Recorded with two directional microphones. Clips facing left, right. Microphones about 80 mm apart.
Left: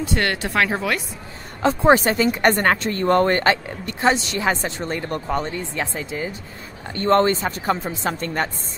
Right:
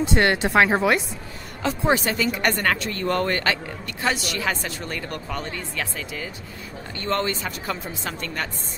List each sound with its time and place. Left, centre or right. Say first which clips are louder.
0.0 s speech: right 3 dB; right
1.6 s a woman's voice: left 6 dB; left